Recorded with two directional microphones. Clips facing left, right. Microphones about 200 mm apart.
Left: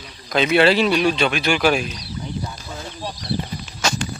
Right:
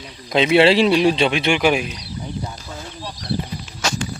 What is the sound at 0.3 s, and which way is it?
Speech, 25° right (ahead or behind).